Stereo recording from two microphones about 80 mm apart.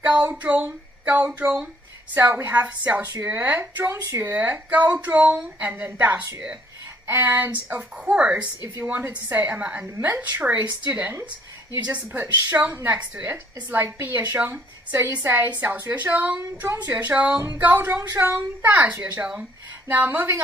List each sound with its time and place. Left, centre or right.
0.0 s a woman's voice: centre